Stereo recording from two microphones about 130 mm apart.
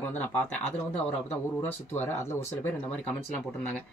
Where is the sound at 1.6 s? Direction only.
20° left (ahead or behind).